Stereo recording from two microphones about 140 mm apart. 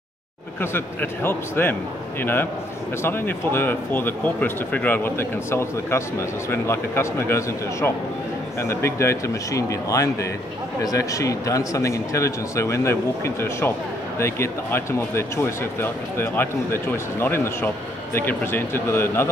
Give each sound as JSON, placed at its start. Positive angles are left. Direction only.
{"t": 0.6, "sound": "speech", "side_deg": 15}
{"t": 3.0, "sound": "speech", "side_deg": 15}